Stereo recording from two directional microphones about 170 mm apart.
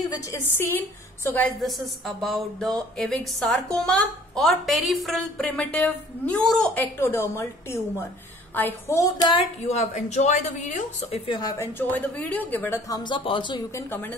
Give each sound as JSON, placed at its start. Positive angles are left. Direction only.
{"t": 0.1, "sound": "a woman's voice", "side_deg": 15}
{"t": 1.6, "sound": "a woman's voice", "side_deg": 0}
{"t": 9.3, "sound": "a woman's voice", "side_deg": 35}
{"t": 11.3, "sound": "a woman's voice", "side_deg": 20}
{"t": 13.7, "sound": "a woman's voice", "side_deg": 15}